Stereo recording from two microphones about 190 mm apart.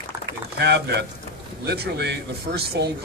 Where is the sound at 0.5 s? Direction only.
55° right (ahead or behind).